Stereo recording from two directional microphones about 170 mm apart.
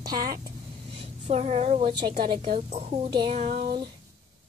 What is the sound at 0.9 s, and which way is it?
A woman's voice, 40° right (ahead or behind).